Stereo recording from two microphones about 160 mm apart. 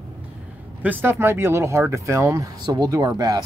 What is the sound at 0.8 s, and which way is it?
Speech, 15° right (ahead or behind).